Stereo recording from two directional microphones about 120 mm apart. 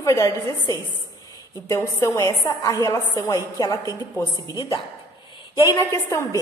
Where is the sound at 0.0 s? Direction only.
25° left (ahead or behind).